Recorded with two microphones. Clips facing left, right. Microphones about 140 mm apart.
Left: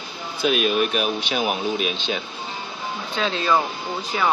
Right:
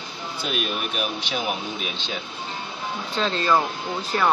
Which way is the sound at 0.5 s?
70° left (ahead or behind).